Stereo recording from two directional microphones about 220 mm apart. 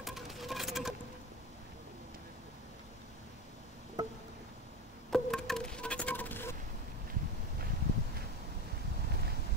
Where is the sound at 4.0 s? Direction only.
20° right (ahead or behind).